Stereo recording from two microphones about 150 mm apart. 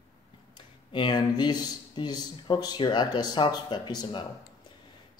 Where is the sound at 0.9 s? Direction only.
30° left (ahead or behind).